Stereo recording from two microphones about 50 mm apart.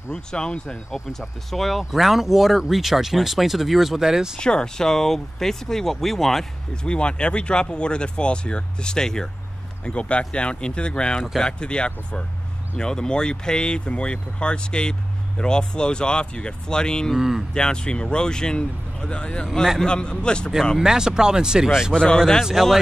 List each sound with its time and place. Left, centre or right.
0.1 s speech: centre
1.5 s speech: centre
4.4 s speech: centre
6.7 s speech: centre
9.8 s speech: left
17.1 s speech: centre
17.6 s speech: centre
20.8 s speech: centre
21.9 s speech: centre
22.4 s speech: centre